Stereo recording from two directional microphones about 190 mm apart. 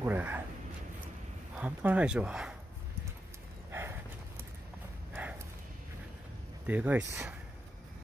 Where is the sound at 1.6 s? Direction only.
10° right (ahead or behind).